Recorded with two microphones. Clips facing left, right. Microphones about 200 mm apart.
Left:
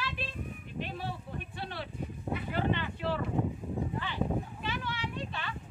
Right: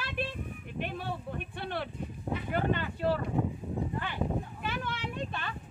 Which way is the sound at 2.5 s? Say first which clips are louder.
Right 2 dB; 45° right (ahead or behind).